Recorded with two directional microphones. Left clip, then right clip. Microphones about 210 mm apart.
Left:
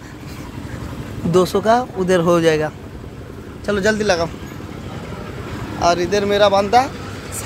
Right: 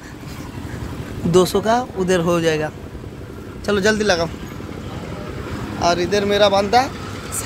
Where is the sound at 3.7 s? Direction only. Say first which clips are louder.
Even; 5° right (ahead or behind).